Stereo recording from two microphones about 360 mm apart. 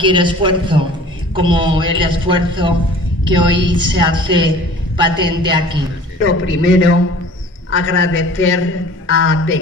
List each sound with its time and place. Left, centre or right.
0.0 s a man's voice: centre
6.2 s a man's voice: left